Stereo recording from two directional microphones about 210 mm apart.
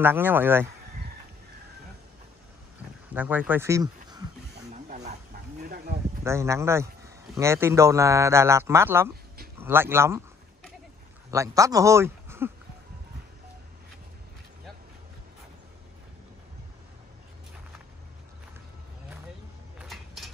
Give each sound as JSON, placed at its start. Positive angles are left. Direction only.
{"t": 0.0, "sound": "a man's voice", "side_deg": -10}
{"t": 3.1, "sound": "speech", "side_deg": -5}
{"t": 4.6, "sound": "wild animals", "side_deg": -35}
{"t": 5.6, "sound": "a sound", "side_deg": -45}
{"t": 6.2, "sound": "a man's voice", "side_deg": -10}
{"t": 11.2, "sound": "speech", "side_deg": -15}
{"t": 19.8, "sound": "a sound", "side_deg": 0}